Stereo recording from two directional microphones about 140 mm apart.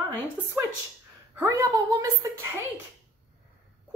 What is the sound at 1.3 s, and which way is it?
Speech, 20° right (ahead or behind).